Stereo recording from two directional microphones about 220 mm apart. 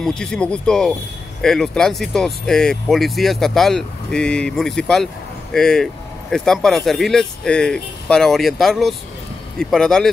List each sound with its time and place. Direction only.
0.0 s speech: 5° left (ahead or behind)